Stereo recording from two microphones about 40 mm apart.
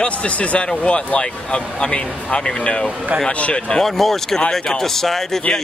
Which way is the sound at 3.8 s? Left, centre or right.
Centre.